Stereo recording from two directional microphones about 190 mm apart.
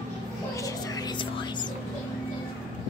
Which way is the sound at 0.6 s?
20° left (ahead or behind).